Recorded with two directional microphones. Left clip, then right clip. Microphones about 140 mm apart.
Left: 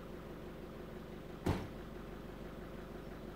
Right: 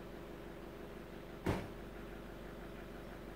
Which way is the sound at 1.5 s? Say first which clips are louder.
Even; 55° left (ahead or behind).